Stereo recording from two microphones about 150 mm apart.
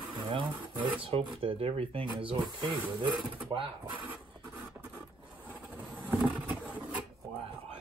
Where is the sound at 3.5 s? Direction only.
35° right (ahead or behind).